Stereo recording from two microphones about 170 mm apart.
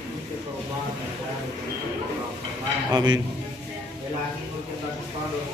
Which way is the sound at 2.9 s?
25° right (ahead or behind).